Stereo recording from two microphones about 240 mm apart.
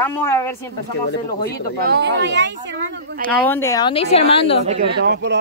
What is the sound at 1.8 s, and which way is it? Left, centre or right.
Speech, right.